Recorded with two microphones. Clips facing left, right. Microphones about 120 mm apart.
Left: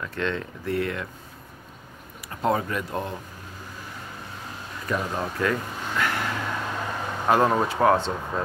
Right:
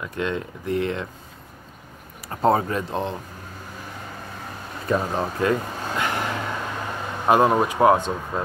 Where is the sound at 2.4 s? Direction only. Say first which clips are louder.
Right 5 dB; 30° right (ahead or behind).